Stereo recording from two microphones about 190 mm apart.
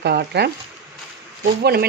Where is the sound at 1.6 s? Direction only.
55° right (ahead or behind).